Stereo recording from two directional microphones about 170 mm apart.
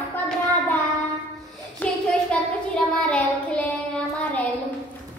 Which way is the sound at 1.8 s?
10° left (ahead or behind).